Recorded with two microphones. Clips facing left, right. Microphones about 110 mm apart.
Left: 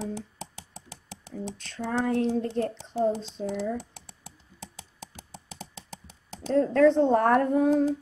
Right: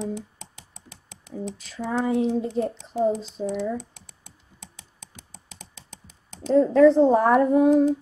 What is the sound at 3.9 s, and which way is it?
Computer keyboard, 30° left (ahead or behind).